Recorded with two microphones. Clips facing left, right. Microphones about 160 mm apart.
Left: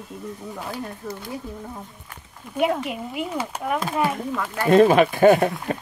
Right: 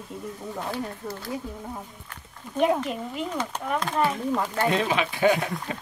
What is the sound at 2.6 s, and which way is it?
Speech, 10° left (ahead or behind).